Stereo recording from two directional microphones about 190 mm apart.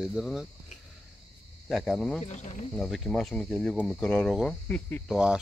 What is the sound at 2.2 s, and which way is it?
Speech, 40° left (ahead or behind).